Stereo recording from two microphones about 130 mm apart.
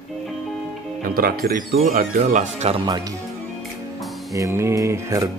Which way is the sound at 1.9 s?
90° right.